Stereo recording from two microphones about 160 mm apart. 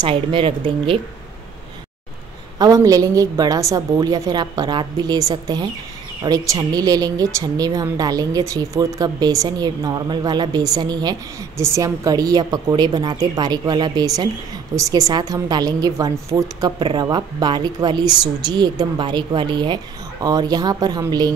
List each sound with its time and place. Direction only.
0.0 s speech: 30° right (ahead or behind)
2.6 s a woman's voice: 20° right (ahead or behind)